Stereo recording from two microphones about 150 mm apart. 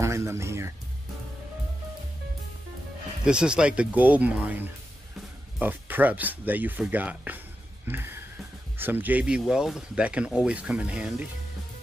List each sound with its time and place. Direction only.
0.0 s speech: 20° right (ahead or behind)
3.3 s speech: 5° right (ahead or behind)
7.8 s music: 15° right (ahead or behind)
8.7 s speech: 15° right (ahead or behind)